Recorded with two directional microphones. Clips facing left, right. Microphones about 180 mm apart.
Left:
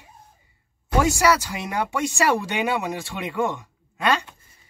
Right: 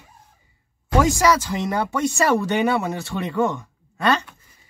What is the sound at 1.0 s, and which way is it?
Speech, 10° left (ahead or behind).